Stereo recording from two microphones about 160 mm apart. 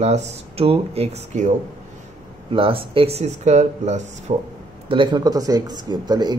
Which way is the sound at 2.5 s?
35° right (ahead or behind).